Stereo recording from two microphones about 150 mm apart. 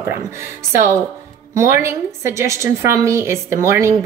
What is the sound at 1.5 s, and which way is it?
A woman's voice, 20° right (ahead or behind).